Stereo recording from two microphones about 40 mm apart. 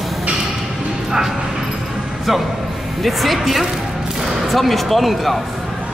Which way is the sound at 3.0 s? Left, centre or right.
Centre.